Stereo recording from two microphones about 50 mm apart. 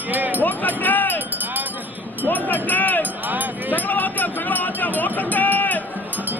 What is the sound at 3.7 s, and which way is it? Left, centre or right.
Music, left.